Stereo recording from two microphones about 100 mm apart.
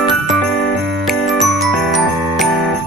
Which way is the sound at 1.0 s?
Centre (ahead or behind).